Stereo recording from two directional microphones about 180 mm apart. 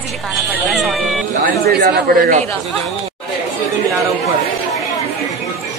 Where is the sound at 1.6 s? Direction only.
60° right (ahead or behind).